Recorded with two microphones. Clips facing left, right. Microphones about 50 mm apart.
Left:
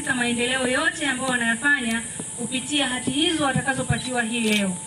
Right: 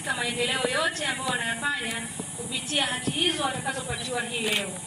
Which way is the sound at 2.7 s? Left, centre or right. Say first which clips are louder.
Left 4 dB; centre.